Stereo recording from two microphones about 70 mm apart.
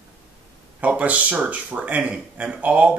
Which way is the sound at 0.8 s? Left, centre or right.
Right.